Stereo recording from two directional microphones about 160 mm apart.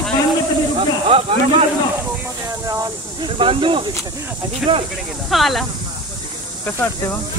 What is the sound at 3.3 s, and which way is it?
Speech, 35° right (ahead or behind).